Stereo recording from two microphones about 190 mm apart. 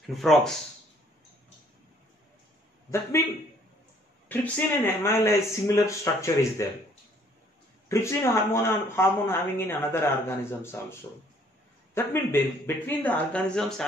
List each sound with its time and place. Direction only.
0.0 s speech: centre (ahead or behind)
4.3 s speech: 10° left (ahead or behind)
7.9 s speech: 15° left (ahead or behind)